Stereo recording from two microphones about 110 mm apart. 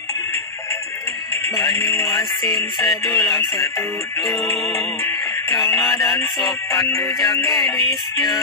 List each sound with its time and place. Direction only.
2.0 s music: 30° left (ahead or behind)
4.7 s music: 25° left (ahead or behind)